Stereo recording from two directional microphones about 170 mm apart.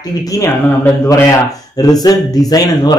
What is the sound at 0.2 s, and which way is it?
Speech, 20° left (ahead or behind).